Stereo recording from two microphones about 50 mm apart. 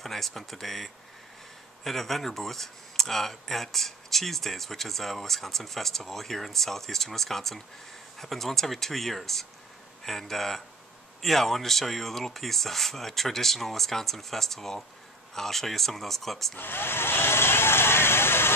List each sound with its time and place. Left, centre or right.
0.0 s speech: centre
16.5 s speech: left